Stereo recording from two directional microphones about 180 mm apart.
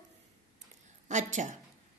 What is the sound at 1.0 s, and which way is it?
Speech, 40° right (ahead or behind).